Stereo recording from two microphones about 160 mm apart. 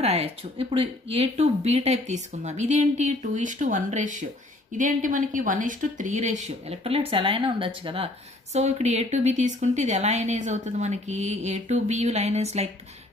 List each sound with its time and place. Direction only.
0.0 s speech: 40° right (ahead or behind)